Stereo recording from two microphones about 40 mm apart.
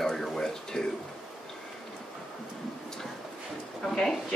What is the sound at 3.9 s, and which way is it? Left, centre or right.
Speech, centre.